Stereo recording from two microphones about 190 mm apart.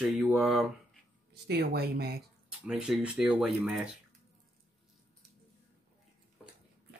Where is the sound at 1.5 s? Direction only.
60° right (ahead or behind).